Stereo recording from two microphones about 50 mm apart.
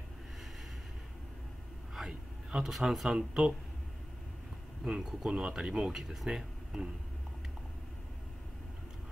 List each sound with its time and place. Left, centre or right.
2.0 s speech: centre
3.2 s speech: centre
4.8 s speech: centre